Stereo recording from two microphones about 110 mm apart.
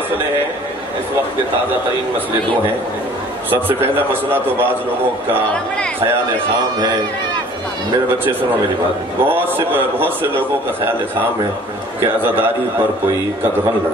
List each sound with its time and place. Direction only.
3.4 s a man's voice: 20° right (ahead or behind)
9.2 s a man's voice: 20° right (ahead or behind)